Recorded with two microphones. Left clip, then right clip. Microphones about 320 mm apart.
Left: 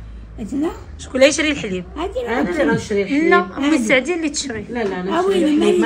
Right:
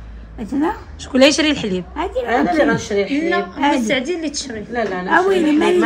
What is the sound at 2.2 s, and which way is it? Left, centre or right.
Speech, left.